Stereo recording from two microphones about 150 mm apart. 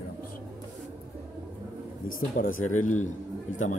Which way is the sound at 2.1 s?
65° left (ahead or behind).